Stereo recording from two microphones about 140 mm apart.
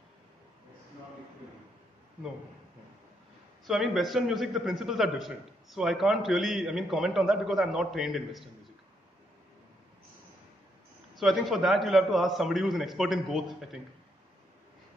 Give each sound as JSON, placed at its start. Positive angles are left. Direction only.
{"t": 3.6, "sound": "a man's voice", "side_deg": 0}
{"t": 11.1, "sound": "a man's voice", "side_deg": 0}